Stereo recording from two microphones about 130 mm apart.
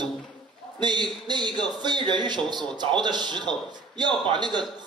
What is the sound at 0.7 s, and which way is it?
A man's voice, 35° right (ahead or behind).